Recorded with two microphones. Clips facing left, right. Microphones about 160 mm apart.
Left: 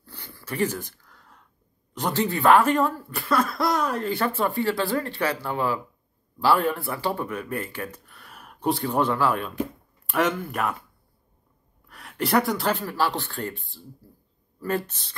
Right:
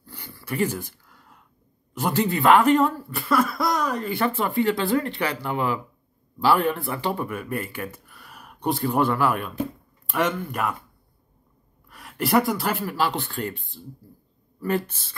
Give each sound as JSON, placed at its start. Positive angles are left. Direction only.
{"t": 0.0, "sound": "a sound", "side_deg": -15}
{"t": 2.0, "sound": "speech", "side_deg": -5}
{"t": 2.2, "sound": "speech", "side_deg": -15}
{"t": 3.1, "sound": "speech", "side_deg": 0}
{"t": 4.2, "sound": "speech", "side_deg": -15}
{"t": 10.0, "sound": "speech", "side_deg": 0}
{"t": 11.9, "sound": "speech", "side_deg": 0}